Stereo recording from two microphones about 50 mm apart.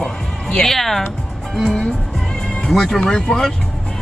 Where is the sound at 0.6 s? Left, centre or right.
Centre.